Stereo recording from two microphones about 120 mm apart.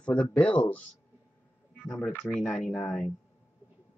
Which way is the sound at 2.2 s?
5° left (ahead or behind).